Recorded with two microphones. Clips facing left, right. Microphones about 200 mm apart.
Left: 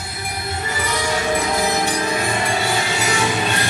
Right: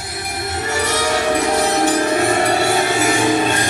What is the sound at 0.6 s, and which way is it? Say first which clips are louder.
Music: right 5 dB; 75° right (ahead or behind).